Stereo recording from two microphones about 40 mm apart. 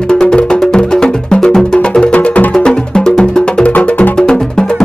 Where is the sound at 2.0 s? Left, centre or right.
Left.